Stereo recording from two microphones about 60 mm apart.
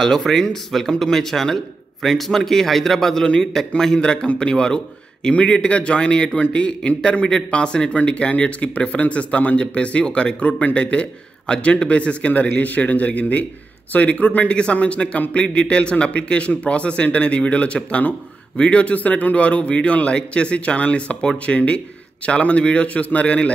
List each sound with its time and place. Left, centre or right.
0.0 s a man's voice: centre